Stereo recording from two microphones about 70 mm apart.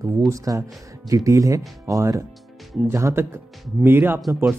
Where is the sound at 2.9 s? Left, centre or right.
Right.